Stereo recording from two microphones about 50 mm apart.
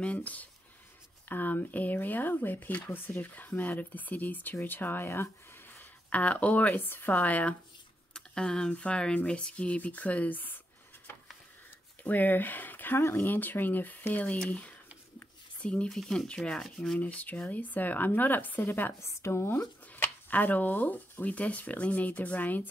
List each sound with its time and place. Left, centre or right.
0.0 s speech: left
6.0 s speech: left
8.1 s speech: centre; by 10.6 s left
12.0 s speech: left
13.3 s speech: left
15.6 s speech: left
15.9 s sanding: centre
17.0 s speech: left
19.0 s speech: left
19.9 s speech: left